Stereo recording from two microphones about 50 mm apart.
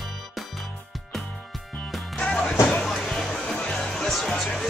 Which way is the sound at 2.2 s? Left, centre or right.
Centre.